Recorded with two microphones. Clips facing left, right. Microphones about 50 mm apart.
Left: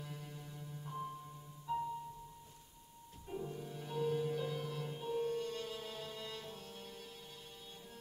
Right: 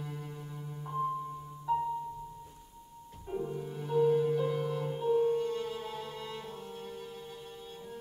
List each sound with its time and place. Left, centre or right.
0.0 s music: centre
1.7 s music: centre
3.3 s music: centre